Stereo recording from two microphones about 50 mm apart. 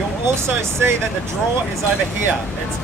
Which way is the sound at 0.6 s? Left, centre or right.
Right.